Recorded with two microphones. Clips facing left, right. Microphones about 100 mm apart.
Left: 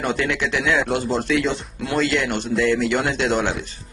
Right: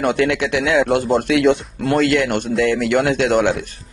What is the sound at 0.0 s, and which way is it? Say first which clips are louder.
A man's voice: right 5 dB; 60° right (ahead or behind).